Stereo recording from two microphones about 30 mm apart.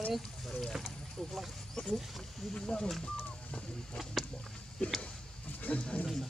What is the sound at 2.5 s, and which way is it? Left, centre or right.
Speech, left.